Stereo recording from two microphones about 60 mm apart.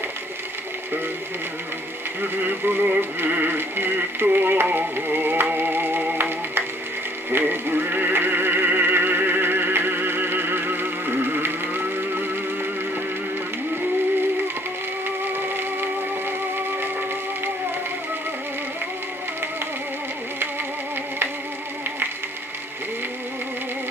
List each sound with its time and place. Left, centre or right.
2.3 s synthetic singing: right
6.1 s music: right
7.2 s synthetic singing: right
15.4 s music: right